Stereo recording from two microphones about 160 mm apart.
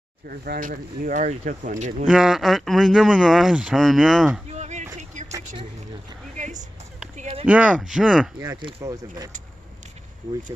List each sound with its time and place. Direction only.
0.3 s speech: 60° right (ahead or behind); by 2.0 s 45° right (ahead or behind)
2.0 s speech: 5° right (ahead or behind)
4.5 s a sound: 45° right (ahead or behind)
6.3 s a sound: 50° right (ahead or behind)
7.4 s speech: 10° right (ahead or behind)
8.5 s speech: 30° right (ahead or behind)